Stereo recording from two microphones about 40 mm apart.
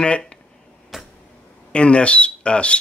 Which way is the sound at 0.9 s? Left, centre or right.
Centre.